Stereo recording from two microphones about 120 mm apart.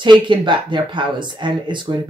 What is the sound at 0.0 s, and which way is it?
Speech, 40° right (ahead or behind).